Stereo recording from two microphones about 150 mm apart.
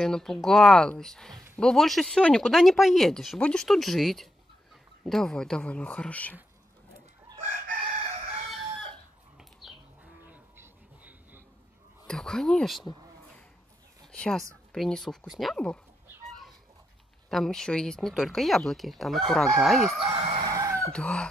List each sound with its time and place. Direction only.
0.0 s speech: 5° left (ahead or behind)
8.5 s chicken: centre (ahead or behind)
9.6 s livestock: centre (ahead or behind)
10.2 s livestock: 10° right (ahead or behind)
12.1 s speech: 5° left (ahead or behind)
14.1 s speech: 5° left (ahead or behind)
17.3 s speech: 5° left (ahead or behind)
20.0 s fowl: 35° right (ahead or behind)
20.5 s chicken: 20° right (ahead or behind)
20.9 s speech: 5° left (ahead or behind)